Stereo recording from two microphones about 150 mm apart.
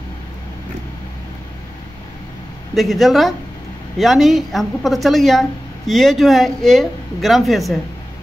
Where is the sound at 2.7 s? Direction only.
Centre (ahead or behind).